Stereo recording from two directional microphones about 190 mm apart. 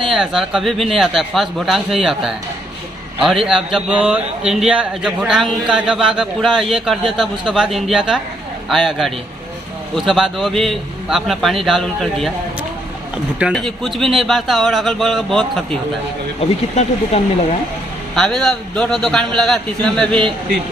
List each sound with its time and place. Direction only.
0.1 s a man's voice: centre (ahead or behind)
13.4 s a man's voice: centre (ahead or behind)
16.7 s speech: 35° left (ahead or behind)
18.1 s a man's voice: 5° left (ahead or behind)